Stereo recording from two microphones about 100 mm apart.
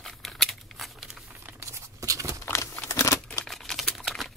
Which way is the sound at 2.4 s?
25° left (ahead or behind).